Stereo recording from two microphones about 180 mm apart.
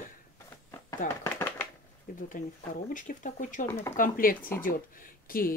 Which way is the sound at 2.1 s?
50° left (ahead or behind).